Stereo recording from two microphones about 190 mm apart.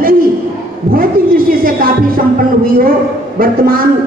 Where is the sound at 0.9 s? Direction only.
50° right (ahead or behind).